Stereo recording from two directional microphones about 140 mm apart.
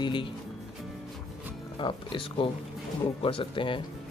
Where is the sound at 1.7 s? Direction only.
35° left (ahead or behind).